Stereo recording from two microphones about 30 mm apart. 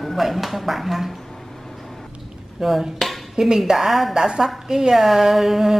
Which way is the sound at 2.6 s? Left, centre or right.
Centre.